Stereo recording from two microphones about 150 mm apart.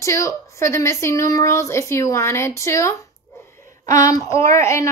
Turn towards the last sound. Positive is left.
turn(degrees=20)  # may be behind; listen again after turning